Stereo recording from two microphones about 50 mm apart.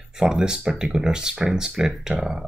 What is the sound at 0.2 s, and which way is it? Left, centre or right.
Speech, centre.